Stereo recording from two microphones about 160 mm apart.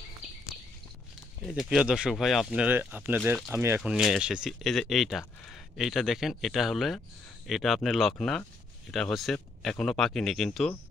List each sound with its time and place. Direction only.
1.4 s speech: centre (ahead or behind)
3.8 s speech: 5° right (ahead or behind)